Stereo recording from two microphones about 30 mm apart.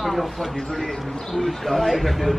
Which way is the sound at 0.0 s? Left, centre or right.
Centre.